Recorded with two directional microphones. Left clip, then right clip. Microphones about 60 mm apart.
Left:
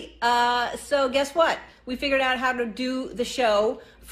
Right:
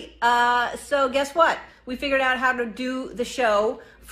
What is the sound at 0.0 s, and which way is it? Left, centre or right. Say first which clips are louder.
A woman's voice: right 2 dB; left.